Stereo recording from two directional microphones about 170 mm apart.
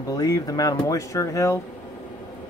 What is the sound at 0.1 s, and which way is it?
Speech, 20° left (ahead or behind).